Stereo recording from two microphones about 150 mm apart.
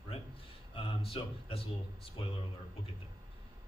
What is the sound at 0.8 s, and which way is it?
Speech, 35° left (ahead or behind).